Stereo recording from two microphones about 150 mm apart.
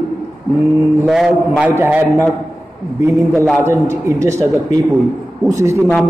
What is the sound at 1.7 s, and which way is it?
Speech, 15° right (ahead or behind).